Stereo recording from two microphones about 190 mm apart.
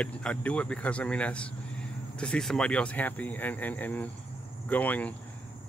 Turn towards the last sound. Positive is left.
turn(degrees=10)  # may be behind; listen again after turning